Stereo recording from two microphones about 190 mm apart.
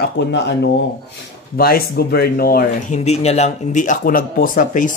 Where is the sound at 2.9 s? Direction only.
35° left (ahead or behind).